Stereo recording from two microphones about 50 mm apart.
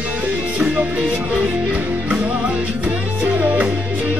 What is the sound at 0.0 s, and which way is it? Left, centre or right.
Music, right.